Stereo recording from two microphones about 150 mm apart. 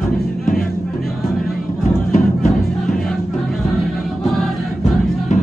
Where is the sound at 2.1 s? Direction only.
55° left (ahead or behind).